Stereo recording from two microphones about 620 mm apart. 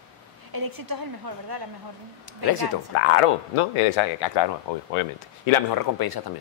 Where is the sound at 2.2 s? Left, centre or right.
Left.